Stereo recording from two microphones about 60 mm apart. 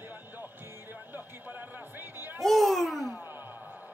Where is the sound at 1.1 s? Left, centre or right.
Right.